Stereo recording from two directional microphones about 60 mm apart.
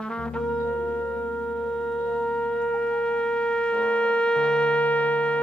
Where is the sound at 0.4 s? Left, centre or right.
Centre.